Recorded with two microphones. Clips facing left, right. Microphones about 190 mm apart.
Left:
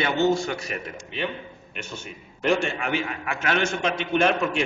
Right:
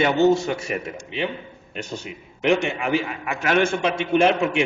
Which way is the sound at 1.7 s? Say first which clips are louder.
Right 6 dB; 40° right (ahead or behind).